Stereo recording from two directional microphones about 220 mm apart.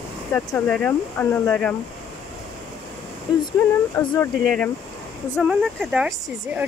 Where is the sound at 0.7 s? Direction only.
5° left (ahead or behind).